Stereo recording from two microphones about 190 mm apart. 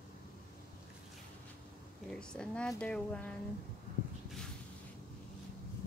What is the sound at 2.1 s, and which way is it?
Speech, 5° left (ahead or behind).